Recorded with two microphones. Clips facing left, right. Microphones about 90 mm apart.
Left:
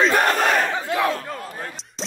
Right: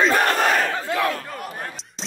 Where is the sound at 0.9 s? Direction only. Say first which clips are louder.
Left 2 dB; 20° left (ahead or behind).